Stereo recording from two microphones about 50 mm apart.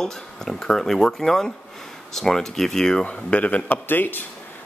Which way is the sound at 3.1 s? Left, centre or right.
Left.